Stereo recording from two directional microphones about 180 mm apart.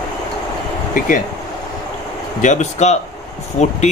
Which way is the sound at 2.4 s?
40° left (ahead or behind).